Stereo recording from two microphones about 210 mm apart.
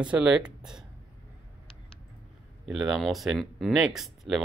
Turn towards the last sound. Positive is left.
turn(degrees=0)  # may be behind; listen again after turning